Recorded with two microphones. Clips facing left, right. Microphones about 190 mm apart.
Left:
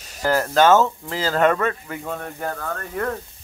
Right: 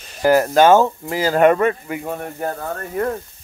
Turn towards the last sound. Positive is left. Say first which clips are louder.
# right 4 dB
turn(degrees=-25)  # may be behind; listen again after turning